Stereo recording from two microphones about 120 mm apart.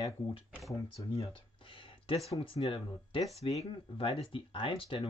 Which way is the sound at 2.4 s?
45° left (ahead or behind).